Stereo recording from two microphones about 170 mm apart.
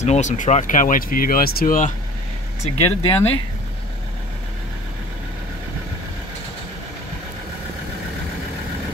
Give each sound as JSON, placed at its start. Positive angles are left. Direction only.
{"t": 0.0, "sound": "speech", "side_deg": 45}
{"t": 2.6, "sound": "speech", "side_deg": 35}